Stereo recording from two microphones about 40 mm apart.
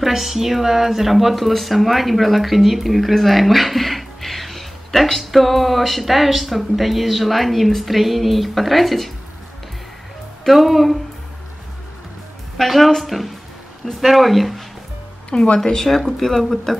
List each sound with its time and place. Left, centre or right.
0.0 s speech: centre
10.4 s speech: centre
12.5 s speech: centre
15.2 s speech: left
15.6 s speech: centre